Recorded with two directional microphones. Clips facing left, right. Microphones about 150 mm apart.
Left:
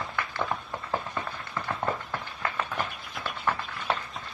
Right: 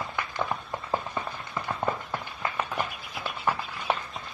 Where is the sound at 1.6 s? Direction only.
15° right (ahead or behind).